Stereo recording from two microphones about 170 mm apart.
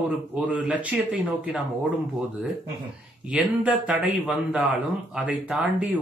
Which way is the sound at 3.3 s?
5° right (ahead or behind).